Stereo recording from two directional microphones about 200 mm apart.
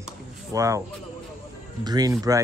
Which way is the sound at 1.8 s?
20° right (ahead or behind).